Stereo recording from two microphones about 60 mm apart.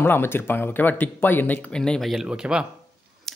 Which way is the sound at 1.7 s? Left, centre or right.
Centre.